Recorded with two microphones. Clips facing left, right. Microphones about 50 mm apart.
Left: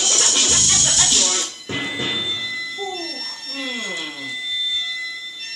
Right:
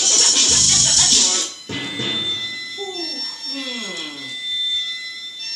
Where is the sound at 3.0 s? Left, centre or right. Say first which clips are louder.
Even; centre.